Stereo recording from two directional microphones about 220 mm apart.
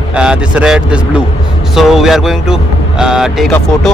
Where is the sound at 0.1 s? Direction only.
5° right (ahead or behind).